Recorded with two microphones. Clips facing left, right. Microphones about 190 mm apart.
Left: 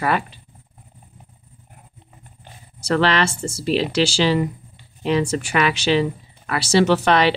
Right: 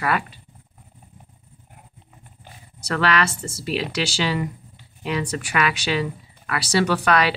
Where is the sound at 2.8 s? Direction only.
30° left (ahead or behind).